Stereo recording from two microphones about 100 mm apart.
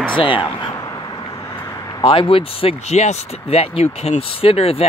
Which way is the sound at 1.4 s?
25° left (ahead or behind).